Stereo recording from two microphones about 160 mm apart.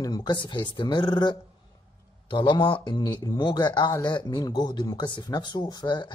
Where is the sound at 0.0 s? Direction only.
25° left (ahead or behind).